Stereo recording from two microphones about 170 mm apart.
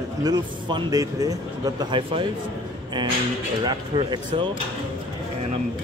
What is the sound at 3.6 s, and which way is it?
Speech, 25° right (ahead or behind).